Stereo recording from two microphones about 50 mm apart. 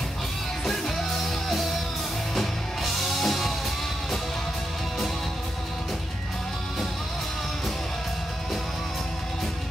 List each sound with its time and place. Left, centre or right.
0.7 s music: centre